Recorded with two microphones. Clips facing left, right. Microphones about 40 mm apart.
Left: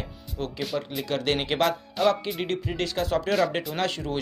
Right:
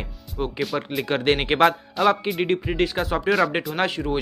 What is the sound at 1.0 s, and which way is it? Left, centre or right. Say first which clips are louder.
Speech: right 6 dB; right.